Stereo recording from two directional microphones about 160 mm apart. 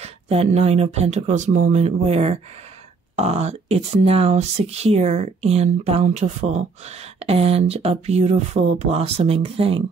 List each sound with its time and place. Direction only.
0.0 s speech: 40° right (ahead or behind)